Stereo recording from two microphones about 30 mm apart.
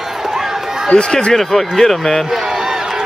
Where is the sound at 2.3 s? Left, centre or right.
Centre.